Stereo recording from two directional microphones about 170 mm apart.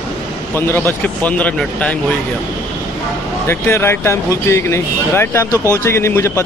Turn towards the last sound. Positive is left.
turn(degrees=15)  # may be behind; listen again after turning